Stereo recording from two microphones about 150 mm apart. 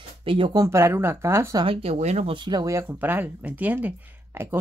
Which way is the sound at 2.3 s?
30° right (ahead or behind).